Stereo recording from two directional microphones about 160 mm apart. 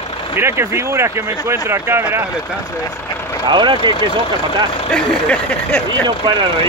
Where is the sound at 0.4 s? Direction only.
15° right (ahead or behind).